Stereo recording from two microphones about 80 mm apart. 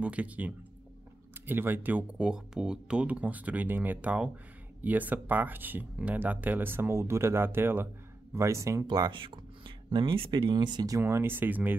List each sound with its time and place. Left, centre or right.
0.0 s speech: centre
2.2 s speech: centre; by 7.9 s right
8.4 s speech: right
8.8 s speech: right
10.9 s speech: right